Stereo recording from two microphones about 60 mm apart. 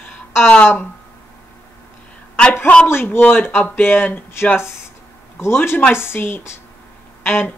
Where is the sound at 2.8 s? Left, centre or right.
Left.